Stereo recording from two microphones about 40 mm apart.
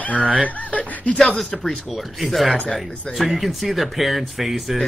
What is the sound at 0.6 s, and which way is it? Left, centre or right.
Speech, left.